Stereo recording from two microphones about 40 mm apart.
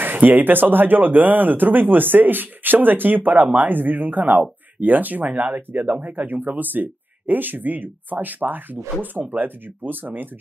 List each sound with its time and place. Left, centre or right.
0.0 s speech: right
4.3 s speech: right